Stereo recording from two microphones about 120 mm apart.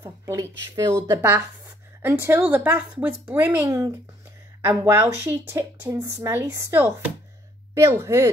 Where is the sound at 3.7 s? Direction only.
30° right (ahead or behind).